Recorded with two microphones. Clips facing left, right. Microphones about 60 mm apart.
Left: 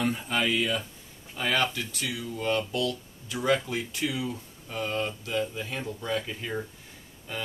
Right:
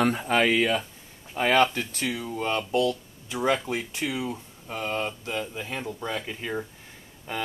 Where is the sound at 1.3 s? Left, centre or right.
Right.